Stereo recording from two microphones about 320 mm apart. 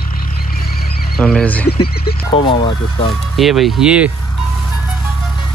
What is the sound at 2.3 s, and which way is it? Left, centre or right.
Speech, centre.